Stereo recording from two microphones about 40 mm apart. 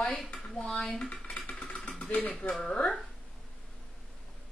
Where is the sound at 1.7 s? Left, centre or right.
Left.